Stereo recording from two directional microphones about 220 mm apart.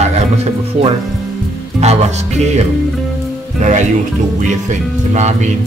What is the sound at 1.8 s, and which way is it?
Speech, 30° right (ahead or behind).